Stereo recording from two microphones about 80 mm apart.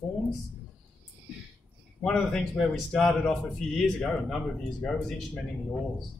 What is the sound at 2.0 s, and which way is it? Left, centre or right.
Speech, centre.